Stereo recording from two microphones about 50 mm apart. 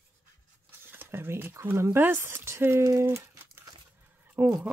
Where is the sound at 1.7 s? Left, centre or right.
Right.